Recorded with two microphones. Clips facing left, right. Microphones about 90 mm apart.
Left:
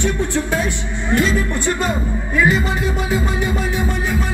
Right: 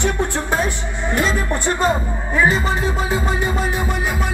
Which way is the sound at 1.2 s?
35° right (ahead or behind).